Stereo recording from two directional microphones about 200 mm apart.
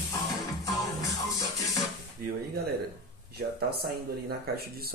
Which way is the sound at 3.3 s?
50° right (ahead or behind).